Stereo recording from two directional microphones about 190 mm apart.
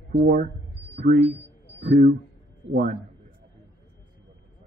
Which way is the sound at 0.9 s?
60° right (ahead or behind).